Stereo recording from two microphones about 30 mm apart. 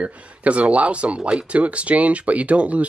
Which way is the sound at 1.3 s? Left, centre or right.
Right.